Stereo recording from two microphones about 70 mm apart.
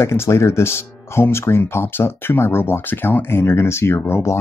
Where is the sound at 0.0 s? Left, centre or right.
Left.